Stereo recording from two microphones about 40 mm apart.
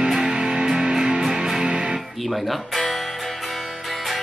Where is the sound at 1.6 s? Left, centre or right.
Right.